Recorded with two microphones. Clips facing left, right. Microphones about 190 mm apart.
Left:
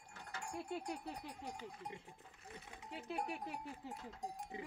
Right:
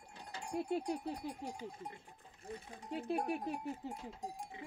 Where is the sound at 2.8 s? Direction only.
50° right (ahead or behind).